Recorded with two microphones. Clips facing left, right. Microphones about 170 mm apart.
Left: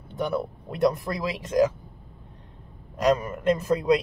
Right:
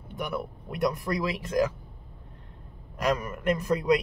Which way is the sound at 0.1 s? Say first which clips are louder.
Left 5 dB; 25° left (ahead or behind).